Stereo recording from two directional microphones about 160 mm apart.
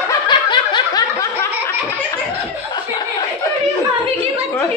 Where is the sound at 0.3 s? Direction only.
30° left (ahead or behind).